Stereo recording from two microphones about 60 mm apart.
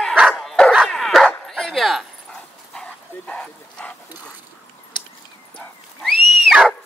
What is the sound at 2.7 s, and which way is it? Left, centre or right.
Dog, centre.